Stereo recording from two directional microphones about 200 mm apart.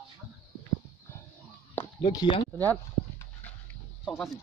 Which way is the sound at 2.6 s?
10° left (ahead or behind).